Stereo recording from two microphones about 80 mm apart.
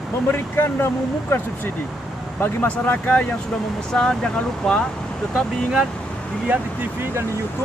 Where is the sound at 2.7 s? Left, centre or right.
Centre.